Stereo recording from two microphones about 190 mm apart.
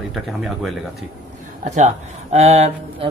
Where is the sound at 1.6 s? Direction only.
40° right (ahead or behind).